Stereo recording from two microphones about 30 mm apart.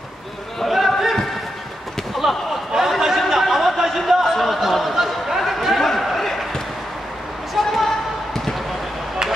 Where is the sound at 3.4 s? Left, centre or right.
Centre.